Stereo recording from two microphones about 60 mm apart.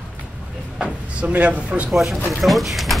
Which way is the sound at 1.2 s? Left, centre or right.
Right.